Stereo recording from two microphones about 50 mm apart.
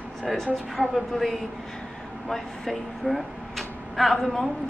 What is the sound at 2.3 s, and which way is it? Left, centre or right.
Speech, centre.